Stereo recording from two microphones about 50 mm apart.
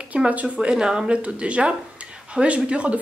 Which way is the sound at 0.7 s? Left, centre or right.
Centre.